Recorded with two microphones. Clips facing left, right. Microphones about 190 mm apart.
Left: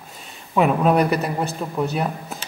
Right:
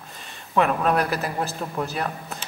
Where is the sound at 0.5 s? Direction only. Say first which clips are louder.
Left 4 dB; centre (ahead or behind).